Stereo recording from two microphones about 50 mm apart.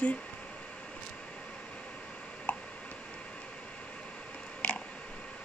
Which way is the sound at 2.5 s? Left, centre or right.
Left.